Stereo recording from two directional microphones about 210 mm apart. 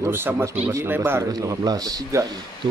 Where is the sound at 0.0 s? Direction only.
10° right (ahead or behind).